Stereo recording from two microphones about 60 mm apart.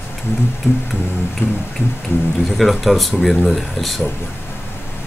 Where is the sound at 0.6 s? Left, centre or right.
Left.